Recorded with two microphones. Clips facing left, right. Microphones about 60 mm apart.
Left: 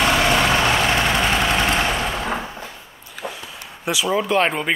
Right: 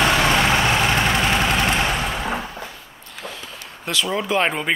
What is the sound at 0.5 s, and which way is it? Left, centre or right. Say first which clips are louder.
Vehicle: left 1 dB; right.